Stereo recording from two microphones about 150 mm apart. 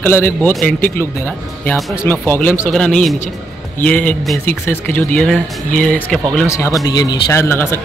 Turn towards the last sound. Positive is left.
turn(degrees=15)  # may be behind; listen again after turning